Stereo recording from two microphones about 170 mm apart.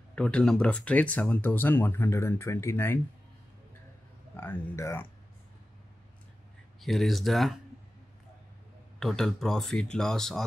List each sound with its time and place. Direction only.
0.1 s speech: 5° left (ahead or behind)
4.4 s speech: 15° left (ahead or behind)
6.8 s speech: centre (ahead or behind)
9.0 s speech: centre (ahead or behind)